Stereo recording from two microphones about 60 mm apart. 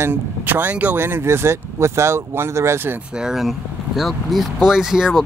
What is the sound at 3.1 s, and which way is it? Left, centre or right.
Speech, centre.